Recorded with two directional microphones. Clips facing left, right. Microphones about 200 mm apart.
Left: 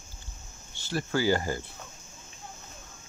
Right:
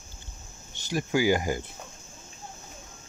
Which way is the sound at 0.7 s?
15° right (ahead or behind).